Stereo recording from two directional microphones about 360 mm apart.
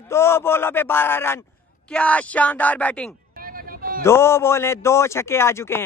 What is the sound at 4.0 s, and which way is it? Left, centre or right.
Speech, centre.